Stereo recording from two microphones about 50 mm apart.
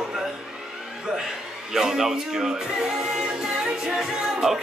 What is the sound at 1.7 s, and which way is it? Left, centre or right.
Speech, centre.